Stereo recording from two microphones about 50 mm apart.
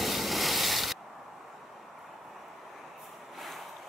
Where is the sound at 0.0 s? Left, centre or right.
Centre.